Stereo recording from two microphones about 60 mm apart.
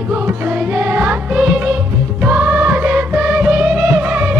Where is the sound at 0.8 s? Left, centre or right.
Right.